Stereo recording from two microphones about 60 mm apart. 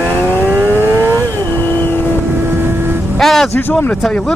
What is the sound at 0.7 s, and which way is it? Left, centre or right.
Vehicle, right.